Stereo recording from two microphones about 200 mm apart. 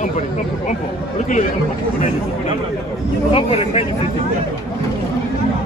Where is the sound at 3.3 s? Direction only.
30° left (ahead or behind).